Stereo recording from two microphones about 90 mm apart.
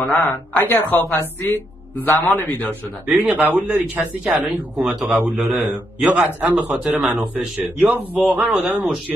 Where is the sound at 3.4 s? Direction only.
20° right (ahead or behind).